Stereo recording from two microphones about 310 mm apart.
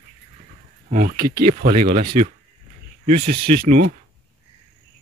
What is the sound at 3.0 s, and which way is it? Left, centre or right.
Speech, right.